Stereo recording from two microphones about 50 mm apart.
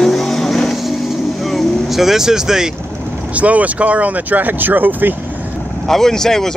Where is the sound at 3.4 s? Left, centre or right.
Right.